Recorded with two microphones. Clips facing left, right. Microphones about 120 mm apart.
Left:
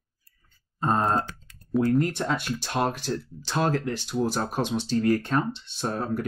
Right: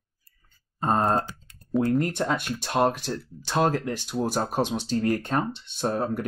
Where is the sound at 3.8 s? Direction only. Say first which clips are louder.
Even; 50° right (ahead or behind).